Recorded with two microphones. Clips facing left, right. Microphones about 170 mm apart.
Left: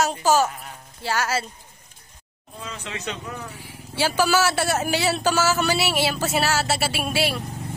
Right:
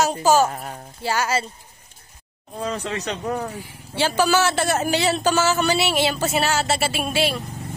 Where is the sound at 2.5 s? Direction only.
40° right (ahead or behind).